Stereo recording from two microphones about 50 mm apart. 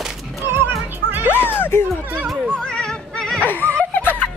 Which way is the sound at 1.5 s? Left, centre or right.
Left.